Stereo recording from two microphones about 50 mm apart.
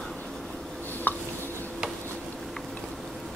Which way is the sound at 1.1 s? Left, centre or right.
Left.